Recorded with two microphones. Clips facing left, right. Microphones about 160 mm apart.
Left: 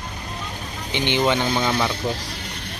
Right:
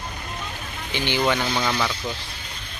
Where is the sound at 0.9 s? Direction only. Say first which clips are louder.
Left 2 dB; 20° left (ahead or behind).